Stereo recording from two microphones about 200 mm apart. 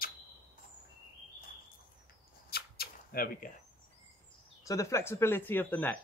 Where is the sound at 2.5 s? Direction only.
50° left (ahead or behind).